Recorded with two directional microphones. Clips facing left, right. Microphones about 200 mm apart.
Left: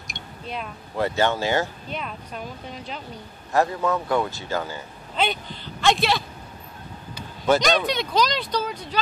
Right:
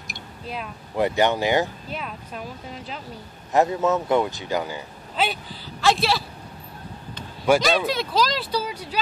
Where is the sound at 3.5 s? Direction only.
20° right (ahead or behind).